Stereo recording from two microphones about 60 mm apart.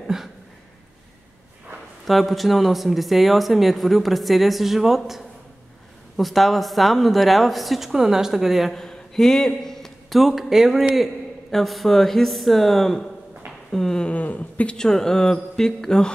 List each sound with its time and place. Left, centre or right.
0.0 s a sound: centre
2.0 s speech: centre
8.7 s a man's voice: centre
14.1 s speech: left
14.8 s speech: centre